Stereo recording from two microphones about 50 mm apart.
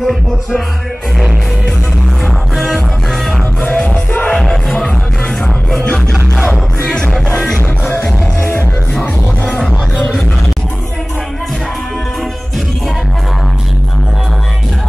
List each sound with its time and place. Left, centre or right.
0.0 s music: centre
2.2 s music: centre
3.6 s music: left
4.4 s music: centre
7.2 s music: left
8.4 s music: left
9.0 s music: left
9.6 s music: centre